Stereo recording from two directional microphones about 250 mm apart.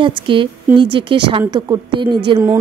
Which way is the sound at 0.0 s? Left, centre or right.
Centre.